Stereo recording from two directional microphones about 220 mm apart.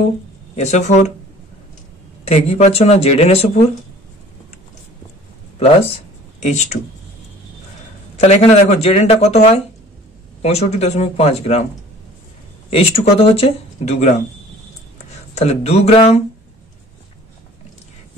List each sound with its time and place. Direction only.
0.6 s speech: 30° left (ahead or behind)
2.2 s speech: 30° left (ahead or behind)
5.6 s speech: 25° left (ahead or behind)
8.2 s speech: 30° left (ahead or behind)
12.6 s speech: 25° left (ahead or behind)
15.3 s speech: 30° left (ahead or behind)